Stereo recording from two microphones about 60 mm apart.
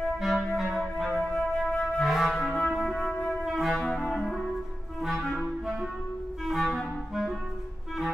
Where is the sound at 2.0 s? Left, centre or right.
Centre.